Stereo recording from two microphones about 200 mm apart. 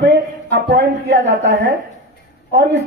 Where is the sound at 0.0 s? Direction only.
60° right (ahead or behind).